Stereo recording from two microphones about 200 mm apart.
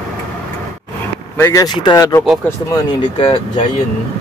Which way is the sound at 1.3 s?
15° left (ahead or behind).